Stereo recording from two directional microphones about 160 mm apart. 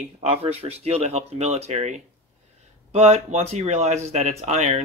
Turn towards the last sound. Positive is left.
turn(degrees=-45)  # may be behind; listen again after turning